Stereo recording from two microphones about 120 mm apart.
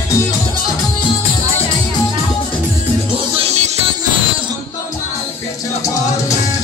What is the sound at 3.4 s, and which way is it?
Music, 65° right (ahead or behind).